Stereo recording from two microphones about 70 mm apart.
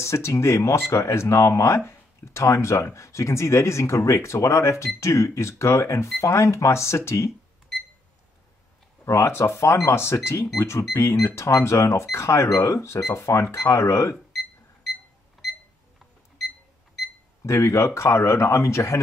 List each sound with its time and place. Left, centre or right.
0.0 s speech: left
7.7 s alarm clock: centre
9.0 s speech: left
14.1 s cash register: centre
17.5 s speech: left